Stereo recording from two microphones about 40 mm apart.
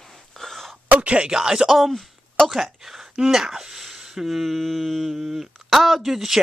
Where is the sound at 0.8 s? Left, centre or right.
Right.